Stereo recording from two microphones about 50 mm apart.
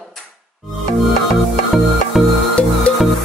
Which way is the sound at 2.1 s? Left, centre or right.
Centre.